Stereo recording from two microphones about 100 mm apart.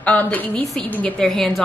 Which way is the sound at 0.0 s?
15° left (ahead or behind).